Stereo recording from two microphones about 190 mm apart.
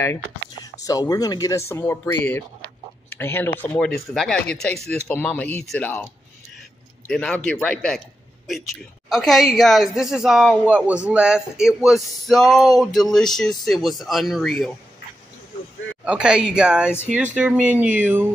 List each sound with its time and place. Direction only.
0.8 s speech: 20° left (ahead or behind)
7.1 s speech: 5° left (ahead or behind)
9.1 s speech: centre (ahead or behind)
16.1 s speech: 5° right (ahead or behind)